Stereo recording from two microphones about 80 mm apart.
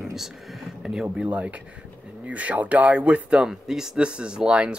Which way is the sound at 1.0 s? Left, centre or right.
Centre.